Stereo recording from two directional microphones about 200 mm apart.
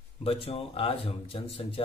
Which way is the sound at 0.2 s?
30° left (ahead or behind).